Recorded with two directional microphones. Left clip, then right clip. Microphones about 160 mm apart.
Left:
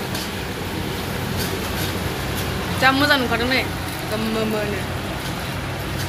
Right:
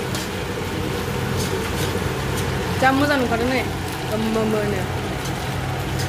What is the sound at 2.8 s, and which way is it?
Speech, 15° right (ahead or behind).